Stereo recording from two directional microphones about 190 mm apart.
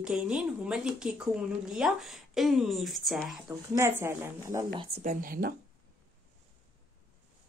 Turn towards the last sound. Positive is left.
turn(degrees=-45)  # may be behind; listen again after turning